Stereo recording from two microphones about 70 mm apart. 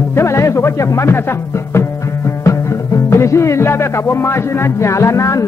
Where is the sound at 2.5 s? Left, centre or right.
Left.